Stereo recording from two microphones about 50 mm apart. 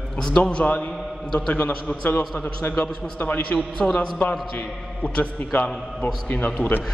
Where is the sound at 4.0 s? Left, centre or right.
Left.